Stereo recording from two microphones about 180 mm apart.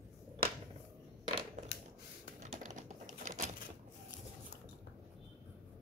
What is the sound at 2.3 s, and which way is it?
Typing, 40° right (ahead or behind).